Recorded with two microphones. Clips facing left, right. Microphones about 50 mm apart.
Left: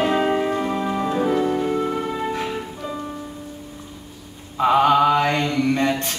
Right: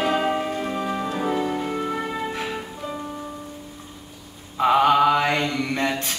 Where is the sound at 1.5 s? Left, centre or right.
Centre.